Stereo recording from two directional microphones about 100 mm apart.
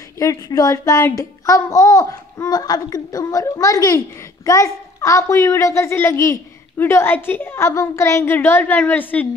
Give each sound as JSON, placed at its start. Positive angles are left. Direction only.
{"t": 0.2, "sound": "a child's voice", "side_deg": 35}